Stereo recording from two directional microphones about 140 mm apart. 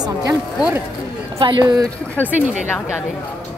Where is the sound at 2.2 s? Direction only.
10° right (ahead or behind).